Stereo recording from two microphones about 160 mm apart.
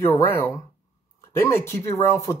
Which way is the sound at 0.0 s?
15° left (ahead or behind).